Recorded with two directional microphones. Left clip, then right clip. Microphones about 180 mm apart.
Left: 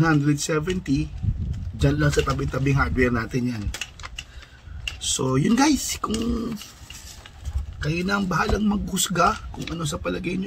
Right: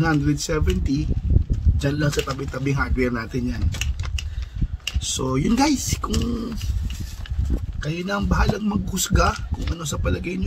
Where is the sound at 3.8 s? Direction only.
40° right (ahead or behind).